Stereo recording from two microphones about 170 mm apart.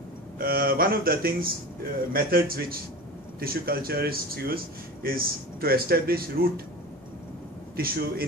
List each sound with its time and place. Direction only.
0.4 s speech: 60° right (ahead or behind)
7.7 s speech: 60° right (ahead or behind)